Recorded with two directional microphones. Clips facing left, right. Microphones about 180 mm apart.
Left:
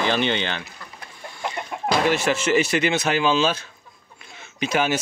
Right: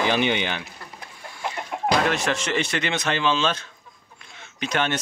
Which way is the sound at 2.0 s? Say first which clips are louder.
Left 3 dB; 5° left (ahead or behind).